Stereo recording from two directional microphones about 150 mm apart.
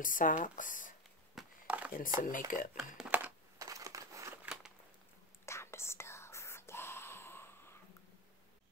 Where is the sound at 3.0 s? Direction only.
10° right (ahead or behind).